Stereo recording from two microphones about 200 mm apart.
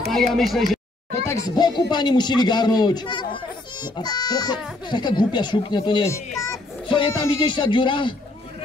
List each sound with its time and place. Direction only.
0.3 s speech: centre (ahead or behind)
1.2 s speech: 15° left (ahead or behind)